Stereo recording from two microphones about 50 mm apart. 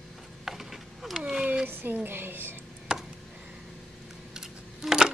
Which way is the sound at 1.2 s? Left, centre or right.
Centre.